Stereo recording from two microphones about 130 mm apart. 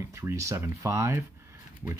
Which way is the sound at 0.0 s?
20° right (ahead or behind).